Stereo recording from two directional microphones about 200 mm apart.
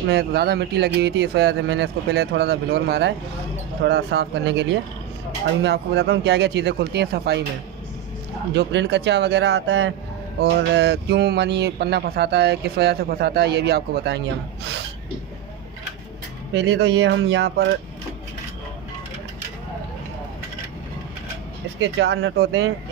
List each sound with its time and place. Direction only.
0.1 s speech: 55° right (ahead or behind)
8.5 s speech: 60° right (ahead or behind)
16.5 s speech: 60° right (ahead or behind)
21.9 s speech: 65° right (ahead or behind)